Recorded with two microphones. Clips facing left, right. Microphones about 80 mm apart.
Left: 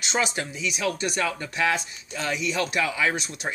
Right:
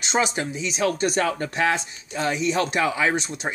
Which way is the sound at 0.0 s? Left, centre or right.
Right.